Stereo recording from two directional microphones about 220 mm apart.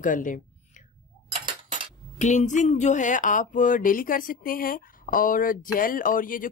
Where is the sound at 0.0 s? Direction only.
35° left (ahead or behind).